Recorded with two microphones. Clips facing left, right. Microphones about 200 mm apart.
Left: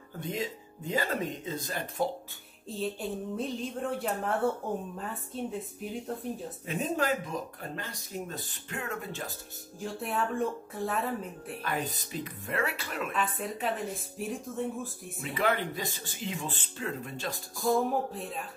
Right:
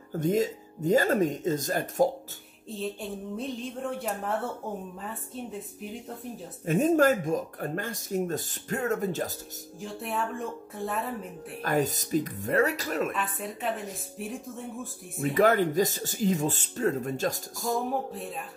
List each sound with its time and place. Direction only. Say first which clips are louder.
0.1 s speech: right 9 dB; 45° right (ahead or behind)
2.7 s a woman's voice: even; centre (ahead or behind)
6.6 s speech: right 10 dB; 45° right (ahead or behind)
9.8 s a woman's voice: even; centre (ahead or behind)
11.6 s speech: right 8 dB; 45° right (ahead or behind)
13.1 s a woman's voice: left 1 dB; centre (ahead or behind)
15.3 s speech: right 8 dB; 45° right (ahead or behind)
17.8 s a woman's voice: even; centre (ahead or behind)